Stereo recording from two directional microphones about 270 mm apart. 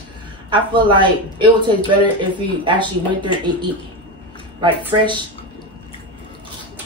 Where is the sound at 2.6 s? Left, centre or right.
Centre.